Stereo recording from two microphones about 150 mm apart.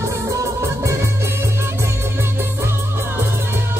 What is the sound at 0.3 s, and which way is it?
Music, 20° right (ahead or behind).